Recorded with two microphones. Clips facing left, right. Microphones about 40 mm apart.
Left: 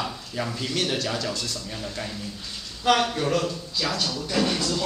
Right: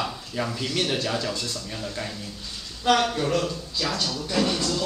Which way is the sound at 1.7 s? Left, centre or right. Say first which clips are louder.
Right 1 dB; centre.